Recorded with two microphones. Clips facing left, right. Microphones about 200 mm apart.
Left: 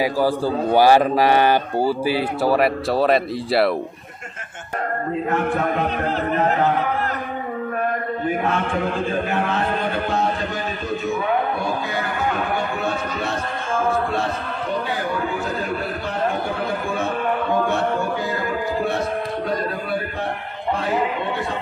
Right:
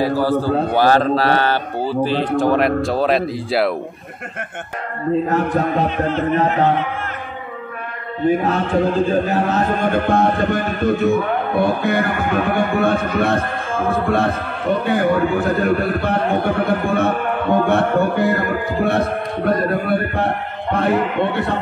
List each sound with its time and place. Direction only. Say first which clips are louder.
0.0 s a man's voice: right 2 dB; 10° left (ahead or behind)
5.3 s a man's voice: right 3 dB; 35° right (ahead or behind)
8.4 s a man's voice: right 4 dB; 35° right (ahead or behind); by 21.5 s 60° right (ahead or behind)